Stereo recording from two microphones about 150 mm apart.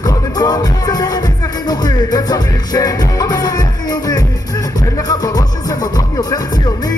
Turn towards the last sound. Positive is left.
turn(degrees=25)  # may be behind; listen again after turning